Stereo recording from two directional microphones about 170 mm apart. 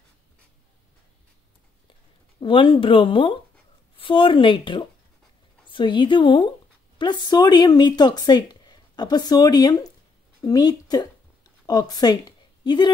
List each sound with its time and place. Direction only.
2.4 s speech: 30° left (ahead or behind)